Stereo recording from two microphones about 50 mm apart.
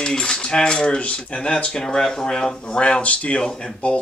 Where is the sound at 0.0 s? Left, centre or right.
Centre.